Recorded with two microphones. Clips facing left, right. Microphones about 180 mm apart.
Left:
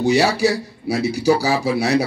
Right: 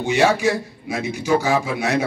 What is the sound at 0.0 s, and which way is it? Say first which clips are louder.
A man's voice: left 1 dB; 35° left (ahead or behind).